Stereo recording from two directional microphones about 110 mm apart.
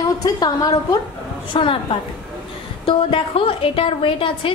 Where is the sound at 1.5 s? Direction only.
50° left (ahead or behind).